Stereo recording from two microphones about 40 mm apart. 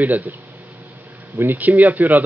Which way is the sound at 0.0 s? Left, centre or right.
Right.